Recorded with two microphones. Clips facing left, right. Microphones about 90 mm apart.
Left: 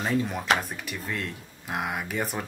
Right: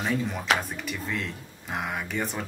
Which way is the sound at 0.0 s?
5° left (ahead or behind).